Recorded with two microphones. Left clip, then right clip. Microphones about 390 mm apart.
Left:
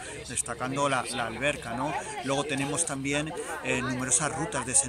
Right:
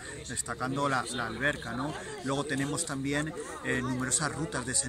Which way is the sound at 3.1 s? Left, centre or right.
Left.